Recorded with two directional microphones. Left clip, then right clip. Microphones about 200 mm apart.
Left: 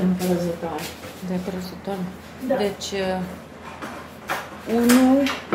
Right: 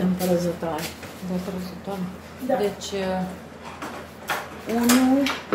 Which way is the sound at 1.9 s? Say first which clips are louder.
Left 3 dB; 20° left (ahead or behind).